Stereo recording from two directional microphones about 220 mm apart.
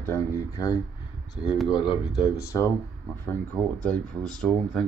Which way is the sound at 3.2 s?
5° left (ahead or behind).